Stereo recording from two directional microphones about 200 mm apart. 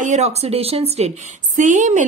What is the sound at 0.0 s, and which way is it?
A woman's voice, 35° right (ahead or behind).